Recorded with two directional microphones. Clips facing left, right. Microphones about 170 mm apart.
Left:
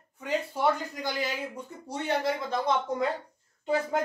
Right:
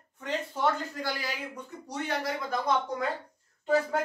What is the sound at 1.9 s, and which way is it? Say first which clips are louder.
Speech: left 4 dB; 25° left (ahead or behind).